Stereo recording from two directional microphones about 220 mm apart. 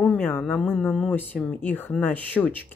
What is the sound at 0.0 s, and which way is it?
Speech, 5° left (ahead or behind).